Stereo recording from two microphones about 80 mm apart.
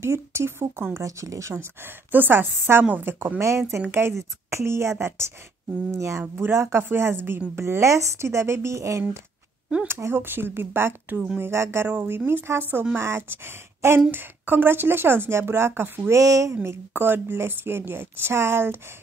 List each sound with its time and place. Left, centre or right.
0.0 s speech: right
1.0 s speech: right
2.1 s a woman's voice: right
16.2 s speech: right
16.6 s a woman's voice: right